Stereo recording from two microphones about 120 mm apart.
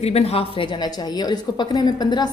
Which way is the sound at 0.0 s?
55° left (ahead or behind).